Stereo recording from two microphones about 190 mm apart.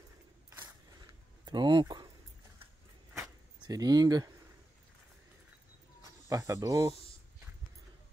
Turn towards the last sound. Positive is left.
turn(degrees=-15)  # may be behind; listen again after turning